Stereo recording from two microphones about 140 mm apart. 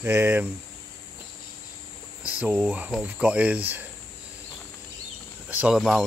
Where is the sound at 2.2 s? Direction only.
15° right (ahead or behind).